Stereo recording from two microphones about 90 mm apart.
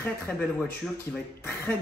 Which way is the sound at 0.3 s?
15° left (ahead or behind).